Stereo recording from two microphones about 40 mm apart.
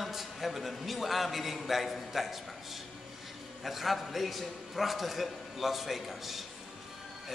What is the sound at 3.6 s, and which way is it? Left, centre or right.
A man's voice, centre.